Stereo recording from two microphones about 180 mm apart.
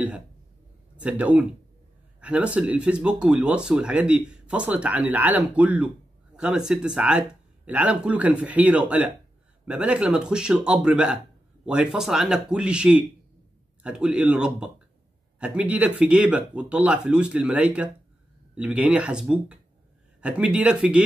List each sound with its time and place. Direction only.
1.0 s a man's voice: 5° right (ahead or behind)